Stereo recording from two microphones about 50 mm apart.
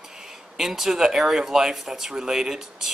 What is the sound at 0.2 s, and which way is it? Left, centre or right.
A man's voice, centre.